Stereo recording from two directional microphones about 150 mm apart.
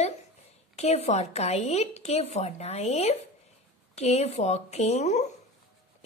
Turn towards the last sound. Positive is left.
turn(degrees=50)  # may be behind; listen again after turning